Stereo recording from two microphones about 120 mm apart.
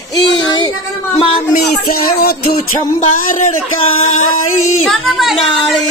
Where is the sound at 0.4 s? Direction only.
40° left (ahead or behind).